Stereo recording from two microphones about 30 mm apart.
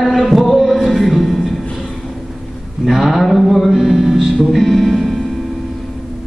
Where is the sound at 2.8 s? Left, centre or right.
Centre.